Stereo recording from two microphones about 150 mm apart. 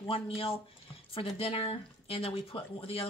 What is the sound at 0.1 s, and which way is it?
Speech, 40° left (ahead or behind).